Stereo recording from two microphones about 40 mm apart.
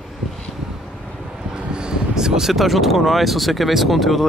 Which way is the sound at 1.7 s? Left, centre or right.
Right.